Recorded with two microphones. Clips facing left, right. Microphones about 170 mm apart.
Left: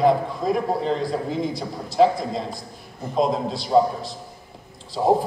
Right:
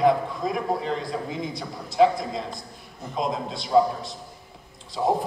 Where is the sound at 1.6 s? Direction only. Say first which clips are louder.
Even; 30° left (ahead or behind).